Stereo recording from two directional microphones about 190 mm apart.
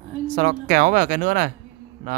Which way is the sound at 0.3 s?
45° right (ahead or behind).